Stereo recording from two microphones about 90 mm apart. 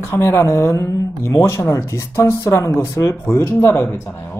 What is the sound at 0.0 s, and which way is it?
Speech, 30° left (ahead or behind).